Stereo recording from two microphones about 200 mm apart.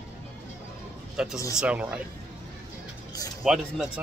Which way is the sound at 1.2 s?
5° right (ahead or behind).